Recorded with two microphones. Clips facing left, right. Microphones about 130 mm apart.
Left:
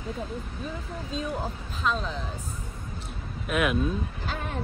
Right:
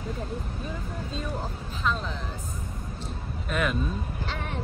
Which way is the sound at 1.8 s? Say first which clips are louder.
Left 1 dB; centre (ahead or behind).